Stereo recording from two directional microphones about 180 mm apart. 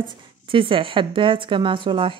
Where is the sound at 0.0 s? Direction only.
30° right (ahead or behind).